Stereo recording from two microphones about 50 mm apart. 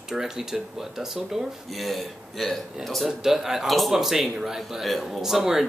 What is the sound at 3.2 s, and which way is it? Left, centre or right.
Speech, centre.